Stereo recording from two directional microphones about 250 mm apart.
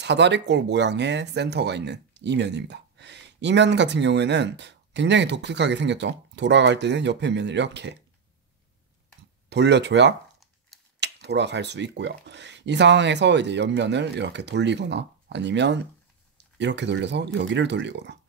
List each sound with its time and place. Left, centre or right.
0.0 s speech: right
9.5 s speech: right